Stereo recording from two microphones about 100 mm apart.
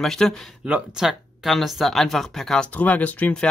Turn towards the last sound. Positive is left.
turn(degrees=15)  # may be behind; listen again after turning